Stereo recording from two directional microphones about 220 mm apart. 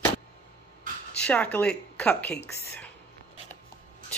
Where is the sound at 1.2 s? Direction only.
5° left (ahead or behind).